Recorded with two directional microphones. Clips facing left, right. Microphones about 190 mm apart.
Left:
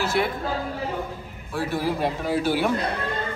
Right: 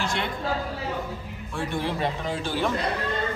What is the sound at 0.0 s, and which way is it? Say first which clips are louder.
Speech: left 5 dB; 5° left (ahead or behind).